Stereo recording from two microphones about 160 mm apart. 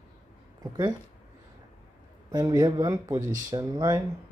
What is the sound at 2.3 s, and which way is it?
Speech, 25° right (ahead or behind).